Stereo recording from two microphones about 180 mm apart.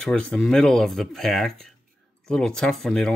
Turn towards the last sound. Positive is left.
turn(degrees=5)  # may be behind; listen again after turning